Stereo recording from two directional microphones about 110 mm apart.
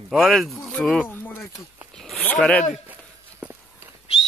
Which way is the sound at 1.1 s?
20° left (ahead or behind).